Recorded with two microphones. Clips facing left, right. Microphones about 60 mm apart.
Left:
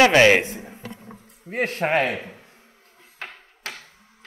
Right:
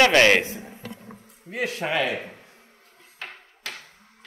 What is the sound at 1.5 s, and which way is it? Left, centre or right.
Speech, left.